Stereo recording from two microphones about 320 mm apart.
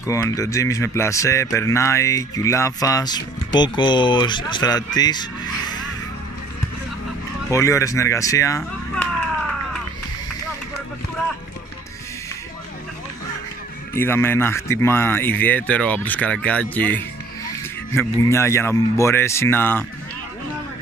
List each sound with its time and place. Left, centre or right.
0.0 s speech: centre
7.5 s speech: centre
13.9 s speech: centre